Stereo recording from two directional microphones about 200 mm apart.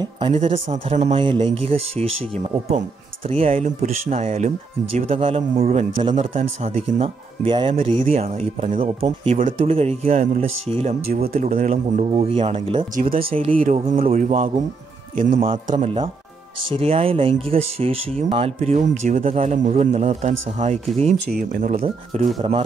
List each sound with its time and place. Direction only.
0.3 s speech: 35° right (ahead or behind)
11.2 s speech: 45° right (ahead or behind); by 12.8 s 30° right (ahead or behind)
13.5 s speech: 40° right (ahead or behind)
21.3 s speech: 45° right (ahead or behind)